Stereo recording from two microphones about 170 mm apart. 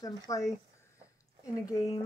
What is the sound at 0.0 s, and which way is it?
Speech, 20° left (ahead or behind).